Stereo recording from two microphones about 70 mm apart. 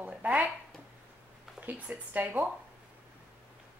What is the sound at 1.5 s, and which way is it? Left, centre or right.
Speech, right.